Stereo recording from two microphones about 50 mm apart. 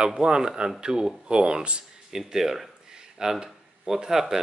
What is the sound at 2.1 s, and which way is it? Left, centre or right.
Speech, centre.